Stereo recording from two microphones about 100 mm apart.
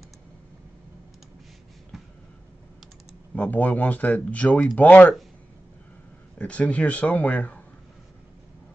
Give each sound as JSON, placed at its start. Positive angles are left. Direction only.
{"t": 3.3, "sound": "speech", "side_deg": 15}
{"t": 6.3, "sound": "speech", "side_deg": 15}